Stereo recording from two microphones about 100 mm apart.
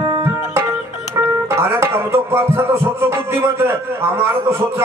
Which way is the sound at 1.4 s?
25° right (ahead or behind).